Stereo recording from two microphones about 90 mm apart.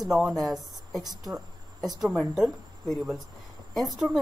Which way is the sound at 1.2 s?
Centre (ahead or behind).